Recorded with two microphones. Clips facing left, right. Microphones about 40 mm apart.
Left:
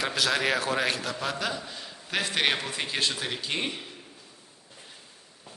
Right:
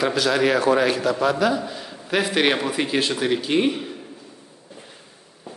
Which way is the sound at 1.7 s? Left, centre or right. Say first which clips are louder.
Right 7 dB; centre.